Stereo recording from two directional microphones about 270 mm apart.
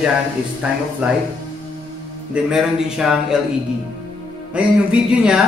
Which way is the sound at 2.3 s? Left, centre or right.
Centre.